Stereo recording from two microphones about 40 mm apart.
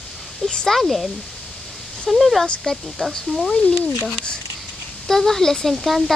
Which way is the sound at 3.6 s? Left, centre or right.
Left.